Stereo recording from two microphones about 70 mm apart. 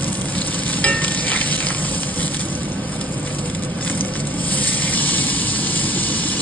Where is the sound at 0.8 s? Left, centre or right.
Left.